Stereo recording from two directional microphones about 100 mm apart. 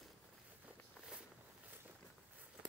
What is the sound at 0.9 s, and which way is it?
Walk, 5° right (ahead or behind).